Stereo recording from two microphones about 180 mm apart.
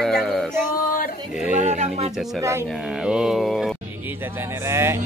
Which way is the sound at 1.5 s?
40° right (ahead or behind).